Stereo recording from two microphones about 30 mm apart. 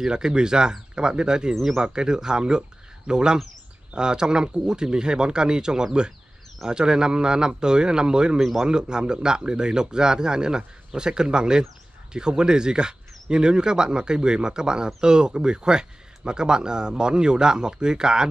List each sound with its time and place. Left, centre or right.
0.0 s speech: right
1.5 s speech: centre
1.8 s speech: right